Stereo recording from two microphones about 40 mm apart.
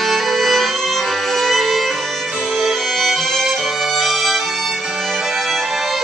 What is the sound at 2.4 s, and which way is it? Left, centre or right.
Music, centre.